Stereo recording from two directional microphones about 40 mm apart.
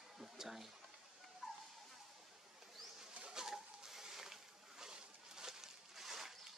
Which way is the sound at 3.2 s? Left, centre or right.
Centre.